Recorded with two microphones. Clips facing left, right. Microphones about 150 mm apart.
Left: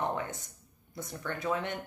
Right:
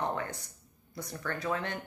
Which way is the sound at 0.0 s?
20° left (ahead or behind).